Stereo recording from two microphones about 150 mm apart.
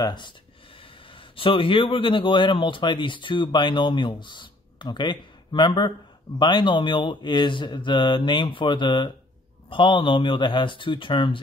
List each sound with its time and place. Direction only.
0.0 s speech: 30° left (ahead or behind)